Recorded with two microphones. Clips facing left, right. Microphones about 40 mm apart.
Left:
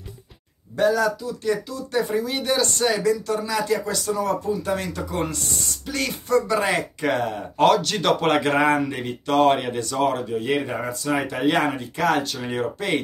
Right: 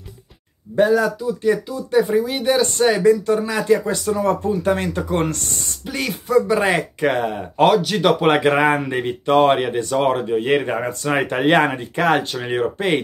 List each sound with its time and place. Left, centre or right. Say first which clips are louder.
0.7 s speech: right 4 dB; centre
2.6 s speech: right 7 dB; right
5.2 s speech: right 4 dB; right
5.9 s speech: right 1 dB; centre
6.4 s speech: right 4 dB; right
10.9 s speech: right 4 dB; right